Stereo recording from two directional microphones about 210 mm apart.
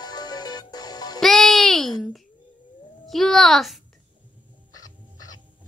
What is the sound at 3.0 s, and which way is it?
Speech, centre (ahead or behind).